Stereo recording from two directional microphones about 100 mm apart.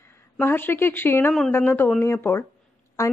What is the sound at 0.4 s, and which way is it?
A woman's voice, 20° left (ahead or behind).